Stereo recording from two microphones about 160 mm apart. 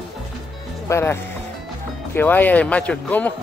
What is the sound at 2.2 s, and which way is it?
Speech, 10° left (ahead or behind).